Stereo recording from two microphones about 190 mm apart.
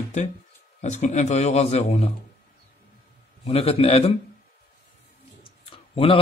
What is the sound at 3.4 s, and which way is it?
Speech, 30° left (ahead or behind).